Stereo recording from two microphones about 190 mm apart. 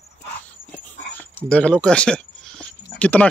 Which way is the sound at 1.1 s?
5° left (ahead or behind).